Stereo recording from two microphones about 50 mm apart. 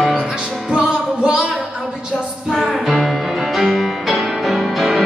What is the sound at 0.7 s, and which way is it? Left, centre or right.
Music, centre.